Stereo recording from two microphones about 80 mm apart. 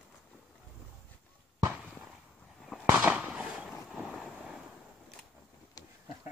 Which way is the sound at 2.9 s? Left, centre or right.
Centre.